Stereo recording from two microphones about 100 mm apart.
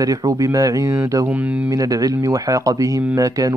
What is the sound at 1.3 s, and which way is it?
Speech, 15° right (ahead or behind).